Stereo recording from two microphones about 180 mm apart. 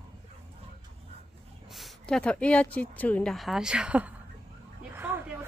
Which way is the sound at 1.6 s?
Centre (ahead or behind).